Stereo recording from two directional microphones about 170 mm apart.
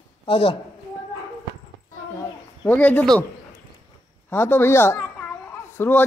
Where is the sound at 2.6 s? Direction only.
10° left (ahead or behind).